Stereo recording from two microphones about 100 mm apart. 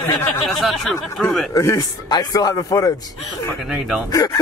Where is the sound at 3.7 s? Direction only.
10° right (ahead or behind).